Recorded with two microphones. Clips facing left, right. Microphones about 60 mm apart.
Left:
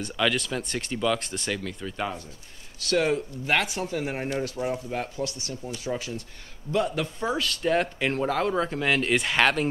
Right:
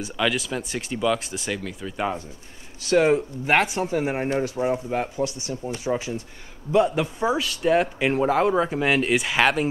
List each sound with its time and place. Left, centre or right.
0.0 s speech: centre
2.8 s speech: centre